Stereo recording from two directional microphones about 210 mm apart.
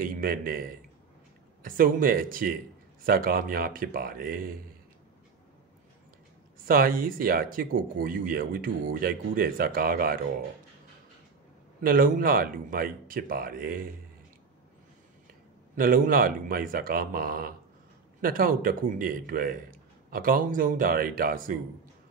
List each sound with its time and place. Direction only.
0.0 s a man's voice: 45° right (ahead or behind)
6.6 s speech: 45° right (ahead or behind)
11.8 s speech: 45° right (ahead or behind)
15.7 s a man's voice: 45° right (ahead or behind)